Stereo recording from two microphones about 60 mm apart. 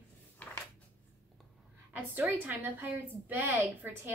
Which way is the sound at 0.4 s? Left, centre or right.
Left.